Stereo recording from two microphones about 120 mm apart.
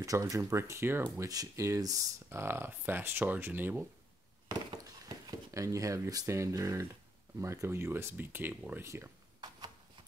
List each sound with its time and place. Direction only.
0.0 s speech: 30° right (ahead or behind)
4.5 s a sound: 35° right (ahead or behind)
7.3 s speech: 20° right (ahead or behind)